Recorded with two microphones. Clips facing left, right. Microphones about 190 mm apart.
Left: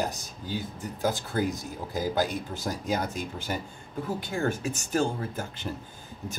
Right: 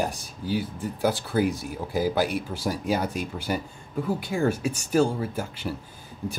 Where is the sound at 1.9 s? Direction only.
10° right (ahead or behind).